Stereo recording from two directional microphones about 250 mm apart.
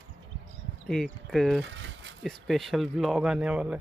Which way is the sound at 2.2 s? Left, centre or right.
Centre.